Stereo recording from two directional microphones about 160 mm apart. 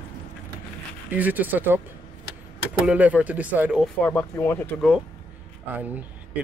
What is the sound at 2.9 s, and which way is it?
Speech, 10° right (ahead or behind).